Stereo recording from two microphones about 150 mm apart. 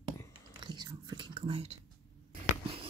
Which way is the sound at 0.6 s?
30° right (ahead or behind).